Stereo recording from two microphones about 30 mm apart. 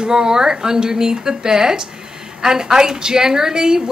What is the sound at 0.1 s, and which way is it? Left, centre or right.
A woman's voice, right.